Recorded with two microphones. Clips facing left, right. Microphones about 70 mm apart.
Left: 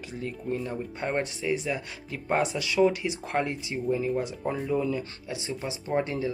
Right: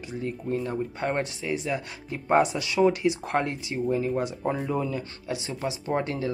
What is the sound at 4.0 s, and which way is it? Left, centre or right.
Speech, right.